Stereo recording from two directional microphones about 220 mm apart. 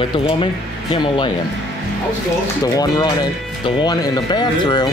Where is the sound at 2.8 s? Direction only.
20° left (ahead or behind).